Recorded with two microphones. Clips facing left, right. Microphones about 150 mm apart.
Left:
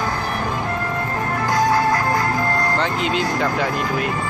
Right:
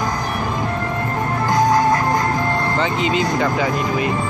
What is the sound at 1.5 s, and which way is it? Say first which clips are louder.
Music: right 2 dB; 20° right (ahead or behind).